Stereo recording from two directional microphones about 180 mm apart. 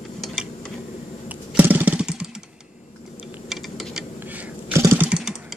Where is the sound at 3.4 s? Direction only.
Centre (ahead or behind).